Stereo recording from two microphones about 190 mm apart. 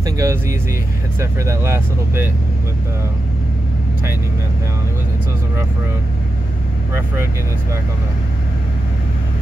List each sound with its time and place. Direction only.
0.0 s speech: 15° right (ahead or behind)